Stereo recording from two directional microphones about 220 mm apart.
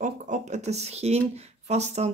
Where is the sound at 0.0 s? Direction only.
35° right (ahead or behind).